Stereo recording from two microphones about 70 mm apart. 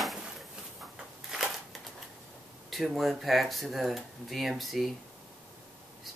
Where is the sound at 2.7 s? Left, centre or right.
Centre.